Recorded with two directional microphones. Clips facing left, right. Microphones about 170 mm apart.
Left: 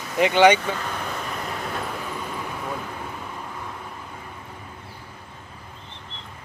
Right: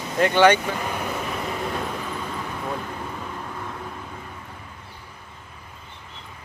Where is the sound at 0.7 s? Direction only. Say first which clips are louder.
Right 2 dB; 10° right (ahead or behind).